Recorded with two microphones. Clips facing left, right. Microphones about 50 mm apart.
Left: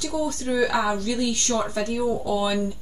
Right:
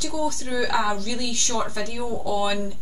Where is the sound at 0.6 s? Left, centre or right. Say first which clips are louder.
Even; left.